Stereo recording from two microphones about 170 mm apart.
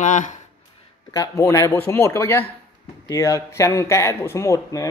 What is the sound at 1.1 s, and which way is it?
Speech, 20° left (ahead or behind).